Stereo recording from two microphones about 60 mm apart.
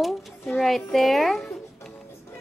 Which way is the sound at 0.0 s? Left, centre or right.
Centre.